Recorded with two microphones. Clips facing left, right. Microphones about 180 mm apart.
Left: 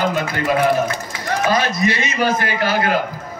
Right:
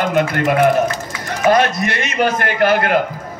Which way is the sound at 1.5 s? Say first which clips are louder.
Right 3 dB; 60° right (ahead or behind).